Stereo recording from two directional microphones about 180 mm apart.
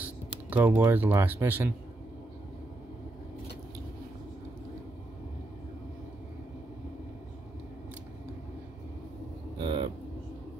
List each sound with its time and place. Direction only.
0.0 s typing: 10° right (ahead or behind)
0.8 s speech: 10° right (ahead or behind)
9.6 s vehicle: 25° right (ahead or behind)